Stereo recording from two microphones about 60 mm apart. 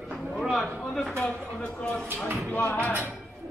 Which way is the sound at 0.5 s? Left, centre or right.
Centre.